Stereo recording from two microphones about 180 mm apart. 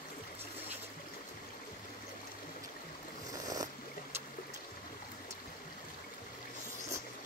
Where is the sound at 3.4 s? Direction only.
20° right (ahead or behind).